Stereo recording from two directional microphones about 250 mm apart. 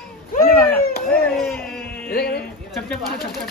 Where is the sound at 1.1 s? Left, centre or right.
Centre.